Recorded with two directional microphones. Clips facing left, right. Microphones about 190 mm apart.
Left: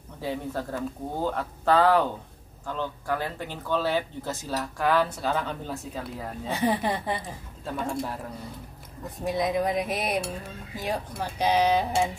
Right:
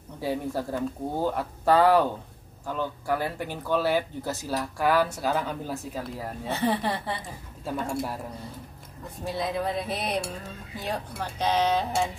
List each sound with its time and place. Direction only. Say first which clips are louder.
0.2 s speech: right 2 dB; 10° right (ahead or behind)
6.5 s speech: left 1 dB; 15° left (ahead or behind)
7.6 s speech: right 1 dB; 10° right (ahead or behind)
9.2 s speech: left 3 dB; 15° left (ahead or behind)